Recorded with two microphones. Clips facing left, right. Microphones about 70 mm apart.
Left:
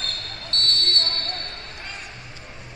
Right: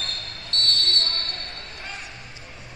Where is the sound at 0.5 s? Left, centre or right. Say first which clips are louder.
Left 1 dB; left.